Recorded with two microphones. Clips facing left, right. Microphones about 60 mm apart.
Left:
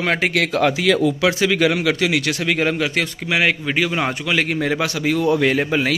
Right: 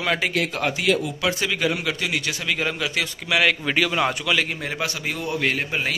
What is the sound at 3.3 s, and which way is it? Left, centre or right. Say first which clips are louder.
A man's voice: even; left.